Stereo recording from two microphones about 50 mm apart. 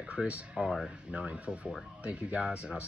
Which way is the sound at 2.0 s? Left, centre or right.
Right.